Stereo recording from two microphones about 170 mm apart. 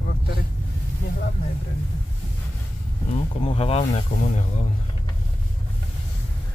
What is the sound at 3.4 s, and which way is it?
Speech, 35° left (ahead or behind).